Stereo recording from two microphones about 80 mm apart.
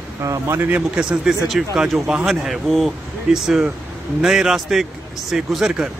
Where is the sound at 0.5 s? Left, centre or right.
Right.